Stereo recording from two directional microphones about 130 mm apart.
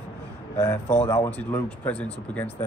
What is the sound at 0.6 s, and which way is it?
A man's voice, 20° left (ahead or behind).